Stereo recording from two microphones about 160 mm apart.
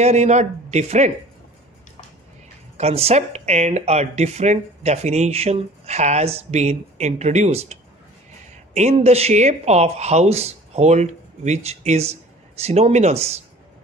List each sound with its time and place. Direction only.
0.0 s speech: 45° right (ahead or behind)
2.8 s speech: 40° right (ahead or behind)